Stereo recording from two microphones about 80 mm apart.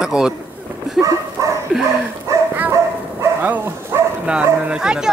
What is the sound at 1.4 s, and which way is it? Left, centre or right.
Bow-wow, right.